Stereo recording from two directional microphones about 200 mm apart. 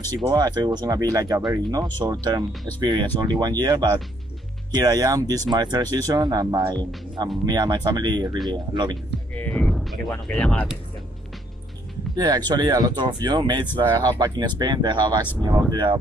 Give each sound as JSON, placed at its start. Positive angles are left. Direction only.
{"t": 0.3, "sound": "speech", "side_deg": -20}
{"t": 9.4, "sound": "speech", "side_deg": 5}
{"t": 12.2, "sound": "speech", "side_deg": -20}